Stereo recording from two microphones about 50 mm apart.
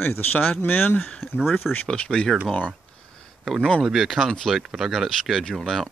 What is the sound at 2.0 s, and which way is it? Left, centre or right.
Speech, centre.